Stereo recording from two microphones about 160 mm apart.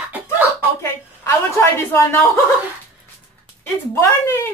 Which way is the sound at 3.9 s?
15° left (ahead or behind).